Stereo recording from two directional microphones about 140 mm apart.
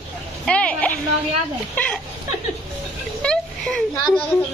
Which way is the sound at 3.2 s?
5° left (ahead or behind).